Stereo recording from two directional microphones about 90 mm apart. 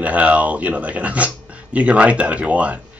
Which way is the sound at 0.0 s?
15° right (ahead or behind).